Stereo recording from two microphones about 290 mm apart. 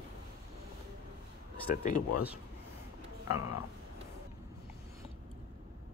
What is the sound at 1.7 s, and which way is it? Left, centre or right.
Speech, left.